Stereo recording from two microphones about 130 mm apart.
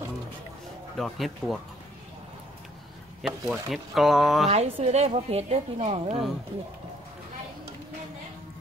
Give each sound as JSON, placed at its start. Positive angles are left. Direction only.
{"t": 0.9, "sound": "speech", "side_deg": 0}
{"t": 3.2, "sound": "speech", "side_deg": -5}
{"t": 4.5, "sound": "a woman's voice", "side_deg": -55}